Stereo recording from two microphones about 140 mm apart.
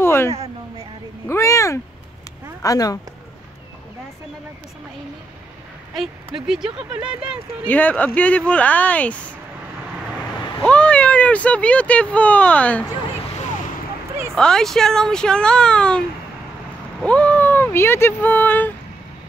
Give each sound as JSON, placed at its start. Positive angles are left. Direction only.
{"t": 0.0, "sound": "a sound", "side_deg": 15}
{"t": 0.3, "sound": "a sound", "side_deg": -45}
{"t": 1.2, "sound": "a sound", "side_deg": 20}
{"t": 2.6, "sound": "speech", "side_deg": 25}
{"t": 5.9, "sound": "speech", "side_deg": -5}
{"t": 7.6, "sound": "speech", "side_deg": 10}
{"t": 10.6, "sound": "speech", "side_deg": 10}
{"t": 14.3, "sound": "speech", "side_deg": 5}
{"t": 17.0, "sound": "speech", "side_deg": 10}